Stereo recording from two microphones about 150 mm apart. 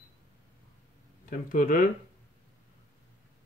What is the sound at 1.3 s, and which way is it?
Speech, 65° left (ahead or behind).